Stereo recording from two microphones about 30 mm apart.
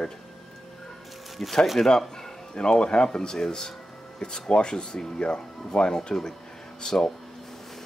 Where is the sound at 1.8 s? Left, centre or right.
Left.